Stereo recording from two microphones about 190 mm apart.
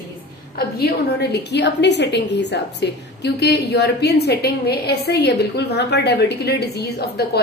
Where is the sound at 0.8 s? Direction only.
60° left (ahead or behind).